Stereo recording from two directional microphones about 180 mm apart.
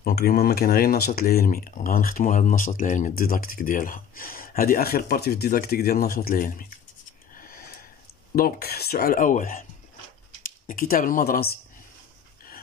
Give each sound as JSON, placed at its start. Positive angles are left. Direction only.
{"t": 0.0, "sound": "speech", "side_deg": 55}
{"t": 7.3, "sound": "a sound", "side_deg": 55}
{"t": 8.4, "sound": "speech", "side_deg": 55}